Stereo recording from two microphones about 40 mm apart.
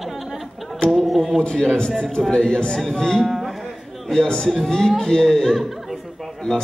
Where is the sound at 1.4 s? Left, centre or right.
Left.